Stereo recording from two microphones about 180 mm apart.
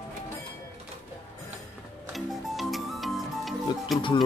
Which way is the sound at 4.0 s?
25° left (ahead or behind).